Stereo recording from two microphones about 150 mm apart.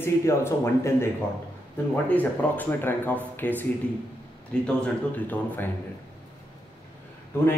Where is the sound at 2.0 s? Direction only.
10° left (ahead or behind).